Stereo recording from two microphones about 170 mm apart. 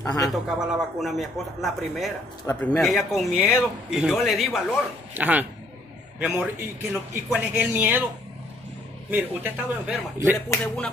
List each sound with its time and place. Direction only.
0.0 s a man's voice: 20° left (ahead or behind)
0.3 s a man's voice: centre (ahead or behind)
2.4 s a man's voice: 15° left (ahead or behind)
2.8 s a man's voice: centre (ahead or behind)
9.1 s a man's voice: 10° right (ahead or behind)